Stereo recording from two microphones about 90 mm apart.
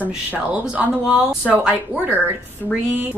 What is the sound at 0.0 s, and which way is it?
A woman's voice, 15° right (ahead or behind).